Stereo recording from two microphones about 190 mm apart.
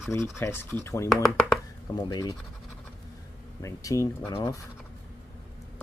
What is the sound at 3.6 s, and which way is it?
Speech, 15° left (ahead or behind).